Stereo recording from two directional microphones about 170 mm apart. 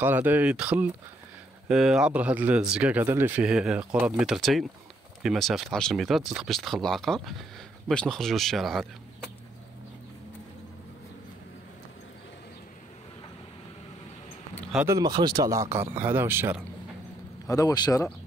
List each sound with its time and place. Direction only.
0.0 s speech: 10° right (ahead or behind)
14.9 s speech: 20° right (ahead or behind)
17.5 s speech: 20° left (ahead or behind)